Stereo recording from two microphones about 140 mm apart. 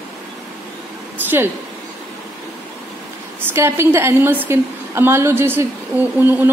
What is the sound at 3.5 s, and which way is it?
A woman's voice, 15° right (ahead or behind).